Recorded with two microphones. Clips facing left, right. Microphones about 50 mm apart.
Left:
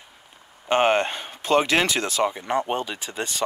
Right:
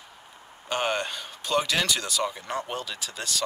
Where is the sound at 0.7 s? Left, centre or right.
Left.